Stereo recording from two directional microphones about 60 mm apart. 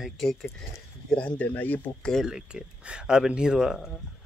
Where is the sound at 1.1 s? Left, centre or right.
Centre.